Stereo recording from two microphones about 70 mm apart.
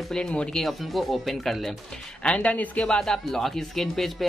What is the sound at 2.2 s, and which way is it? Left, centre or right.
Speech, centre.